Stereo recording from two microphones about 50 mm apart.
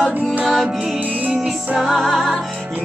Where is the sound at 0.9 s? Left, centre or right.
Right.